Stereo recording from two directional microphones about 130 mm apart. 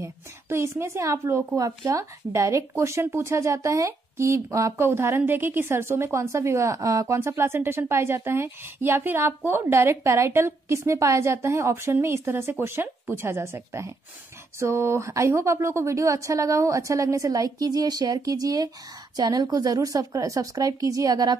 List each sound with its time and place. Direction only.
0.0 s a woman's voice: 20° right (ahead or behind)